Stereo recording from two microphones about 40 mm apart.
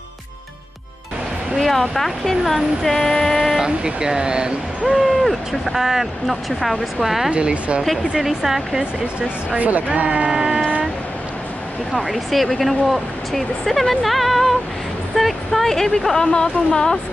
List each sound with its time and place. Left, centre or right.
1.6 s speech: centre
2.5 s female singing: centre
3.5 s speech: centre
4.8 s speech: centre
7.2 s speech: right
8.1 s speech: centre
9.6 s speech: right
10.0 s music: right
12.1 s speech: centre
16.2 s speech: centre